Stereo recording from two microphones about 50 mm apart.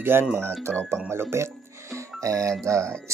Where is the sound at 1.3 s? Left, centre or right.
Right.